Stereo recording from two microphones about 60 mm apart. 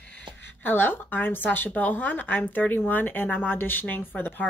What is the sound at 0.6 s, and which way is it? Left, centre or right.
Speech, left.